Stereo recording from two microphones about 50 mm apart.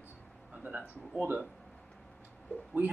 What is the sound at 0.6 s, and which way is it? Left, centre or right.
Speech, right.